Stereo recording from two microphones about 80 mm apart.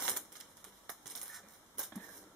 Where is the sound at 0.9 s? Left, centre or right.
Centre.